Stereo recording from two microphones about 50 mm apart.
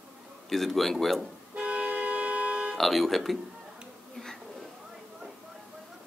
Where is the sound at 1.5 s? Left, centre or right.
Right.